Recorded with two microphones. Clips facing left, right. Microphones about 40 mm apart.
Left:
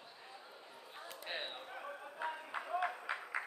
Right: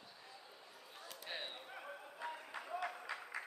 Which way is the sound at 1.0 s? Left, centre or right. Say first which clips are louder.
Left 3 dB; left.